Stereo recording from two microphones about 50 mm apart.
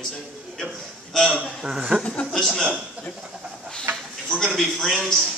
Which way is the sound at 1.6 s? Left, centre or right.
Centre.